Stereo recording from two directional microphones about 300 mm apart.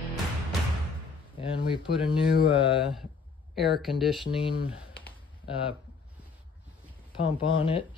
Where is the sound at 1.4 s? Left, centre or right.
Centre.